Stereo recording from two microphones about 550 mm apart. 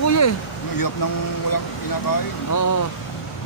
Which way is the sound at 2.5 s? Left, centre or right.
Left.